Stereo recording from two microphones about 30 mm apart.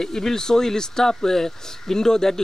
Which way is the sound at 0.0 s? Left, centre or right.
Centre.